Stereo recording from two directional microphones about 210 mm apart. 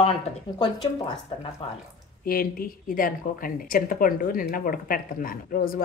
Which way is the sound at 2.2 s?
45° left (ahead or behind).